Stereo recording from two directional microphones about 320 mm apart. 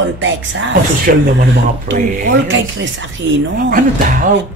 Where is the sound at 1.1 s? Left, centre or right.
Right.